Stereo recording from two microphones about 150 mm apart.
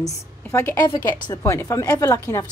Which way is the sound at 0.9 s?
30° left (ahead or behind).